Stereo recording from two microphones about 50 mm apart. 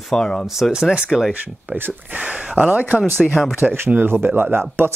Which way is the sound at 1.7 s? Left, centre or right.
Right.